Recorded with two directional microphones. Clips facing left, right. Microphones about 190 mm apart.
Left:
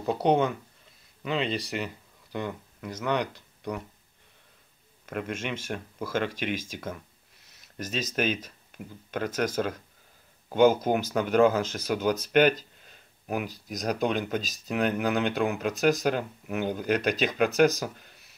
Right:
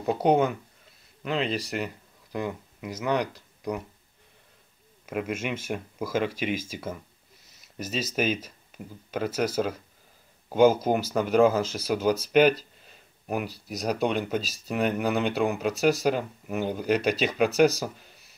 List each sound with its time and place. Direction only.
0.0 s speech: 5° right (ahead or behind)
5.0 s speech: 5° right (ahead or behind)